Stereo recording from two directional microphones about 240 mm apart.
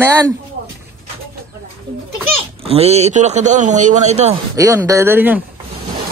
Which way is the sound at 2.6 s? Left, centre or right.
Right.